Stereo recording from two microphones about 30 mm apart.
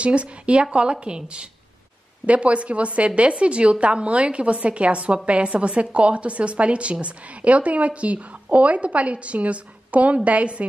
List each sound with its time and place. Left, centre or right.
0.0 s a woman's voice: right
2.2 s a woman's voice: right